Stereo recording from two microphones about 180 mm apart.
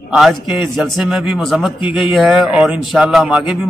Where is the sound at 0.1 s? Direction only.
Centre (ahead or behind).